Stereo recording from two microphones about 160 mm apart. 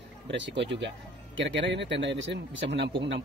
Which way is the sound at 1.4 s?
90° right.